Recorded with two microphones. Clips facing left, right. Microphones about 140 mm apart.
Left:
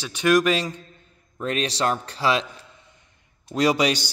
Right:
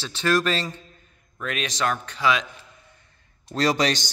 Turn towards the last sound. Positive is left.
turn(degrees=10)  # may be behind; listen again after turning